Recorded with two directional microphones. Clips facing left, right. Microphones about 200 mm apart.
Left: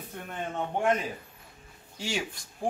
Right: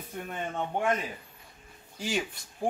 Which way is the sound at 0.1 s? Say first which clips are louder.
Right 2 dB; centre (ahead or behind).